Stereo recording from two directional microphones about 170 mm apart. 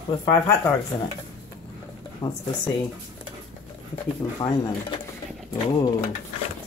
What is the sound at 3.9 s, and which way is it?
Speech, 30° left (ahead or behind).